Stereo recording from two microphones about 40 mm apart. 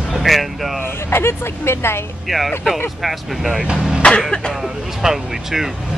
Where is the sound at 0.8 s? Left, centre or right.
Left.